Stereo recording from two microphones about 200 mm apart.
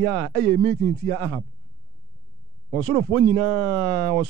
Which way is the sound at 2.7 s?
20° right (ahead or behind).